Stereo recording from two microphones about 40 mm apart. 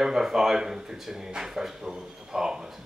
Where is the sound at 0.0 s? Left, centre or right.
Centre.